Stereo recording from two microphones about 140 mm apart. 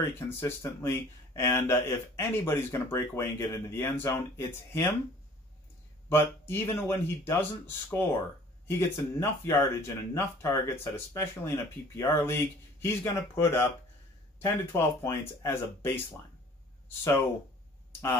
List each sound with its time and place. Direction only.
0.4 s speech: 15° left (ahead or behind)
6.0 s speech: 15° left (ahead or behind)